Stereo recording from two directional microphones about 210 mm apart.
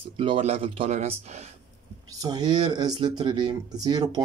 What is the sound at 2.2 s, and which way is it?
Speech, 20° right (ahead or behind).